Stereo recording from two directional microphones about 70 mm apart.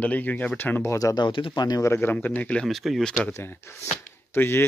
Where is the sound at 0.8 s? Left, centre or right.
Left.